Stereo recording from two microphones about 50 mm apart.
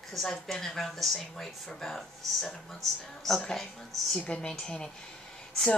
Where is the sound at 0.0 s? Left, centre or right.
Centre.